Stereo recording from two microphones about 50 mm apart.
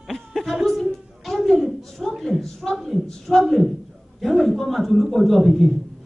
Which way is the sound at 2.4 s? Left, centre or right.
Centre.